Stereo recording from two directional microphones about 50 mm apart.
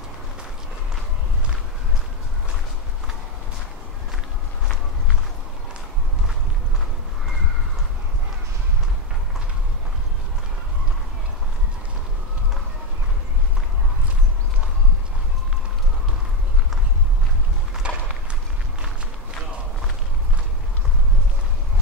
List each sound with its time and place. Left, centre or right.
17.8 s run: right